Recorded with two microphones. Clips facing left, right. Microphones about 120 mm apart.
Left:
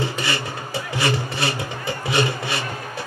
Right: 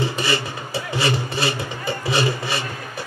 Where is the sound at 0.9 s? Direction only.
25° right (ahead or behind).